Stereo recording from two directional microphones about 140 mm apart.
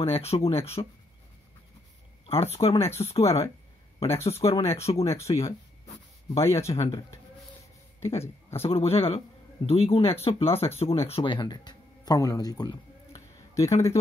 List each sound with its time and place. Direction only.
0.0 s speech: 45° left (ahead or behind)
2.5 s speech: 45° left (ahead or behind)
4.6 s speech: 20° left (ahead or behind)
4.8 s speech: 45° left (ahead or behind)
5.4 s a sound: 45° left (ahead or behind)
6.4 s speech: 20° left (ahead or behind)
8.2 s speech: 20° left (ahead or behind)
8.6 s speech: 45° left (ahead or behind); by 13.7 s 20° left (ahead or behind)